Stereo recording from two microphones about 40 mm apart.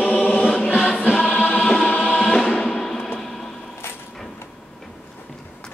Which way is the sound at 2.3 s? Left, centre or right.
Centre.